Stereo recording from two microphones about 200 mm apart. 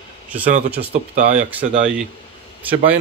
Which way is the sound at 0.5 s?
35° right (ahead or behind).